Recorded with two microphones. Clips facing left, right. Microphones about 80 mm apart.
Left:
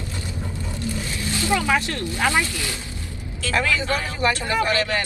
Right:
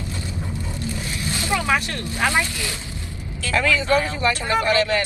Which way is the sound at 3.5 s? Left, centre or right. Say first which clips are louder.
Right 4 dB; left.